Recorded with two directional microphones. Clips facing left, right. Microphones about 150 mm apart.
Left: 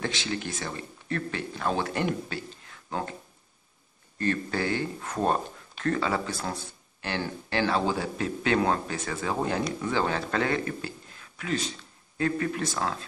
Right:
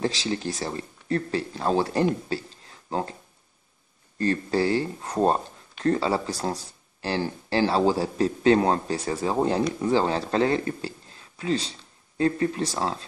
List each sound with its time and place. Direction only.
0.0 s speech: 35° right (ahead or behind)
4.2 s speech: 30° right (ahead or behind)